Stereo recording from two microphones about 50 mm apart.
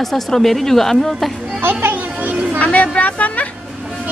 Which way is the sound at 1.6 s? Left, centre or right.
Right.